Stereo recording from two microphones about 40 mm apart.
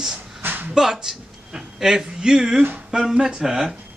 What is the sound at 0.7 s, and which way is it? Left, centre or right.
Speech, centre.